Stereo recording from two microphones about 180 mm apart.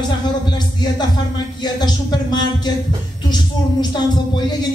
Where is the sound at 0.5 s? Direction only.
25° left (ahead or behind).